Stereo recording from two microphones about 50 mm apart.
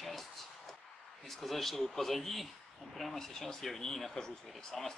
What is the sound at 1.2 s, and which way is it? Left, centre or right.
A man's voice, centre.